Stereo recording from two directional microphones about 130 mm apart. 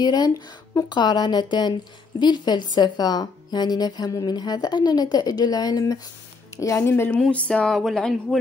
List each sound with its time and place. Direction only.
0.0 s a woman's voice: 30° left (ahead or behind)
7.2 s speech: 10° left (ahead or behind)